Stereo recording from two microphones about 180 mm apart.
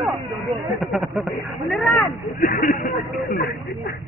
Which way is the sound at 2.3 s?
50° left (ahead or behind).